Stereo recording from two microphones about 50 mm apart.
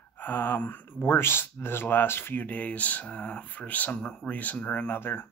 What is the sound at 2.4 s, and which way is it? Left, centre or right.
Speech, left.